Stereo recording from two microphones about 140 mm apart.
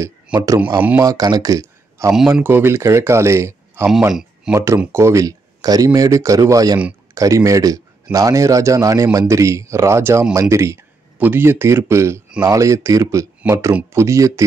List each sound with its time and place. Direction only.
0.0 s speech: 25° right (ahead or behind)
0.7 s speech: 10° right (ahead or behind)
1.0 s speech: 25° right (ahead or behind)
4.1 s speech: 5° right (ahead or behind)
4.9 s speech: 20° right (ahead or behind)